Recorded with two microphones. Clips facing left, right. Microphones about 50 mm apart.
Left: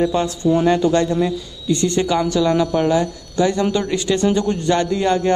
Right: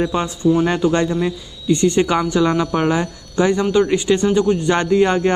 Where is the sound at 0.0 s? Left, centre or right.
Centre.